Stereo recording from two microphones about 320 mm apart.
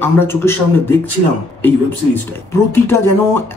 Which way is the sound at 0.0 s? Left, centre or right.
Centre.